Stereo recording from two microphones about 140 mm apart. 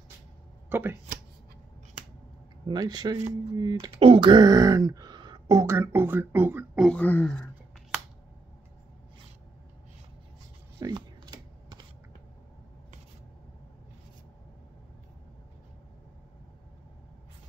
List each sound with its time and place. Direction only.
0.7 s speech: 15° right (ahead or behind)
2.7 s speech: 30° right (ahead or behind)
3.2 s speech: 50° right (ahead or behind)
3.5 s speech: 30° right (ahead or behind); by 6.8 s 15° right (ahead or behind)
6.8 s speech: 10° left (ahead or behind)
10.8 s computer keyboard: 30° right (ahead or behind)